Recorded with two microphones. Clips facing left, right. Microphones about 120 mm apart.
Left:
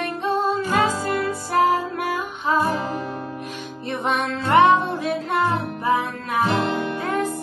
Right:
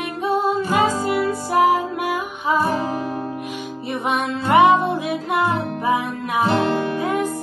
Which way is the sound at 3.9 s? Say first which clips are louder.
Right 1 dB; 10° right (ahead or behind).